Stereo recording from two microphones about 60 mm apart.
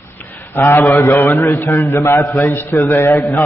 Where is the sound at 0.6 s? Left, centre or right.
Left.